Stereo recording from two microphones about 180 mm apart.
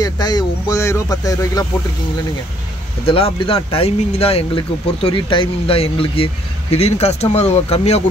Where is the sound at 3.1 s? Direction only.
30° left (ahead or behind).